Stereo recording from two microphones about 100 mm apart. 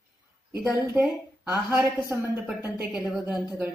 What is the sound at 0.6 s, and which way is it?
A woman's voice, 20° right (ahead or behind).